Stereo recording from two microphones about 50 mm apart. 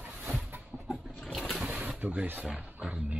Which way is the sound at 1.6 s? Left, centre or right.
Right.